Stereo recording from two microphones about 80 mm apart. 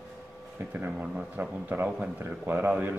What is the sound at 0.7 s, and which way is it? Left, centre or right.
A man's voice, centre.